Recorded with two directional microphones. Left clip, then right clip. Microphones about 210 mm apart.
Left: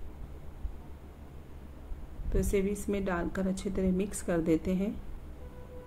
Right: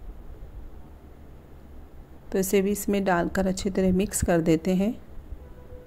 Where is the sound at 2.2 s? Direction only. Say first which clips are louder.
Right 7 dB; 40° right (ahead or behind).